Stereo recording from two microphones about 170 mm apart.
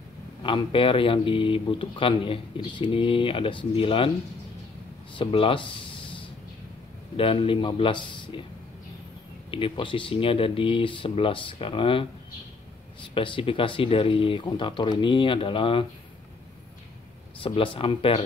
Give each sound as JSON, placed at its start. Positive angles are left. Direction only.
{"t": 0.4, "sound": "speech", "side_deg": 30}
{"t": 5.1, "sound": "speech", "side_deg": 30}
{"t": 7.2, "sound": "speech", "side_deg": 30}
{"t": 9.5, "sound": "speech", "side_deg": 30}
{"t": 13.1, "sound": "speech", "side_deg": 30}
{"t": 17.4, "sound": "speech", "side_deg": 30}